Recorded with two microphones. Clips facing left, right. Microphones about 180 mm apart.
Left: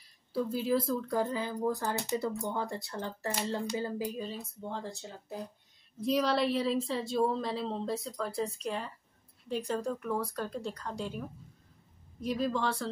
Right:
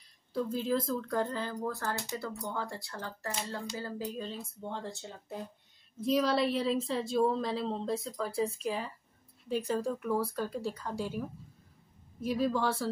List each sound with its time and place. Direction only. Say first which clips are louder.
0.3 s speech: left 1 dB; 5° left (ahead or behind)
4.2 s a woman's voice: left 1 dB; centre (ahead or behind)